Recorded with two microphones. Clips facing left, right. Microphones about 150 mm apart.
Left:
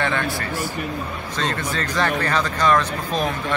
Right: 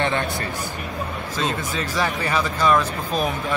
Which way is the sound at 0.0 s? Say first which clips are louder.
Even; 20° right (ahead or behind).